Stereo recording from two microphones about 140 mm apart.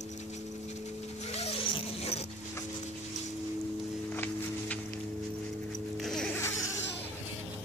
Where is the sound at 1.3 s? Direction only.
50° left (ahead or behind).